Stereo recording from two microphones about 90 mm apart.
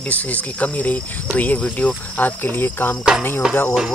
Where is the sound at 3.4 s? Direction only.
10° right (ahead or behind).